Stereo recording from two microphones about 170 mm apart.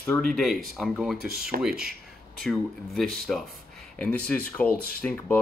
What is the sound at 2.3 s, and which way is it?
Speech, centre (ahead or behind).